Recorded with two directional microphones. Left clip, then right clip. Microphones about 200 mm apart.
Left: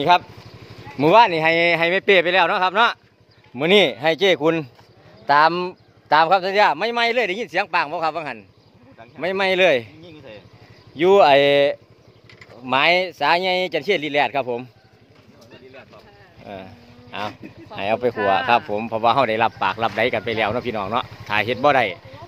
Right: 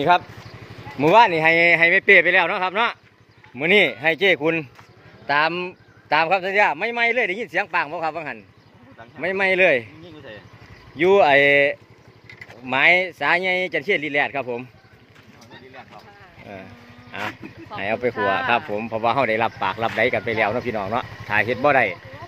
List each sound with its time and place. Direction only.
0.9 s speech: 10° left (ahead or behind)
10.0 s a sound: 25° left (ahead or behind)
11.0 s speech: 15° left (ahead or behind)
16.5 s speech: 15° left (ahead or behind)
18.1 s speech: centre (ahead or behind)